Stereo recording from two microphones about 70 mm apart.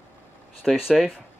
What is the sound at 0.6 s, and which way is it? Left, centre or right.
Speech, centre.